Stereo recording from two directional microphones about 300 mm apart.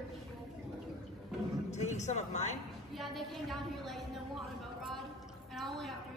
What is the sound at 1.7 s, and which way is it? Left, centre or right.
Speech, left.